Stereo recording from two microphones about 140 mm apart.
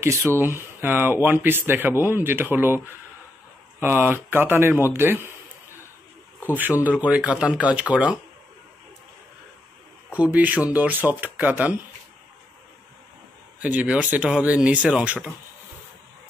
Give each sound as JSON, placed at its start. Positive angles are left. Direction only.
{"t": 0.0, "sound": "speech", "side_deg": -20}
{"t": 3.8, "sound": "speech", "side_deg": -15}
{"t": 6.5, "sound": "speech", "side_deg": -10}
{"t": 10.1, "sound": "speech", "side_deg": -10}
{"t": 13.6, "sound": "speech", "side_deg": -10}